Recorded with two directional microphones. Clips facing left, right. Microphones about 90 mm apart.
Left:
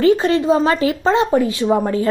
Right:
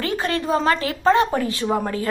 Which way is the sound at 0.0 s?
20° left (ahead or behind).